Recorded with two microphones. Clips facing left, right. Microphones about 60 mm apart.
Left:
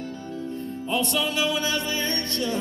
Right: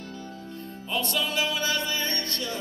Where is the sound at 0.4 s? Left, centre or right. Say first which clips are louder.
Left 7 dB; left.